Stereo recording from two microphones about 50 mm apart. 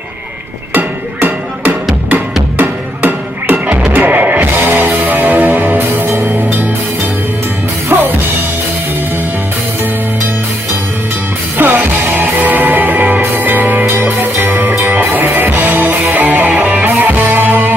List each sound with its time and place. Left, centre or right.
0.7 s music: right
7.9 s music: right
11.5 s music: right